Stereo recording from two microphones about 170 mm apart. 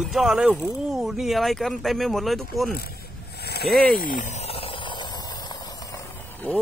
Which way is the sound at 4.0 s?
50° left (ahead or behind).